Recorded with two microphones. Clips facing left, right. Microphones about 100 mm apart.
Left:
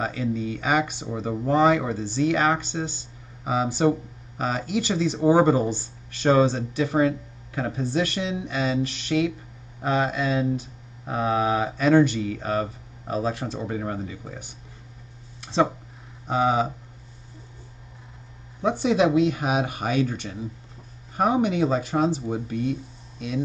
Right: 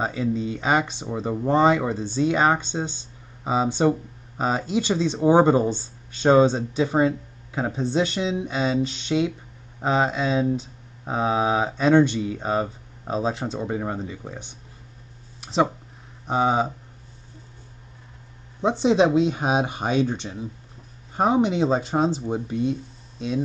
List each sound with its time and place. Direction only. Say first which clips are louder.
0.0 s speech: right 2 dB; 25° right (ahead or behind)
5.5 s speech: right 2 dB; 5° left (ahead or behind)
5.8 s speech: right 2 dB; 20° right (ahead or behind)
15.4 s a sound: even; 15° right (ahead or behind)
16.3 s speech: right 1 dB; 25° right (ahead or behind)
18.6 s speech: right 2 dB; 25° right (ahead or behind)